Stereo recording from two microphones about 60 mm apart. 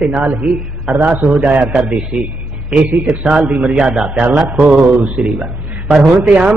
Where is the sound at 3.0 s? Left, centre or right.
Right.